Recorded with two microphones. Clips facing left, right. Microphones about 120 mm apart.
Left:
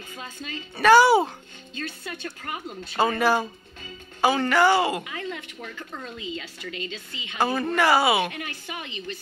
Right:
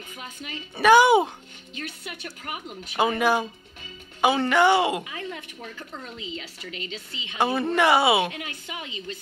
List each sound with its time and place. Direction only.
0.1 s a woman's voice: 20° right (ahead or behind)